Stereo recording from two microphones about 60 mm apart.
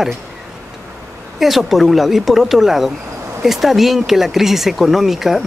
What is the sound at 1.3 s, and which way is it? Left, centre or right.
Speech, centre.